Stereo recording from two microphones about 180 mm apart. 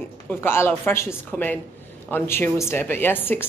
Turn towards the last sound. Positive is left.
turn(degrees=10)  # may be behind; listen again after turning